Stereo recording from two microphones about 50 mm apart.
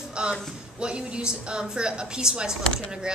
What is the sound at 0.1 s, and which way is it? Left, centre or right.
A woman's voice, centre.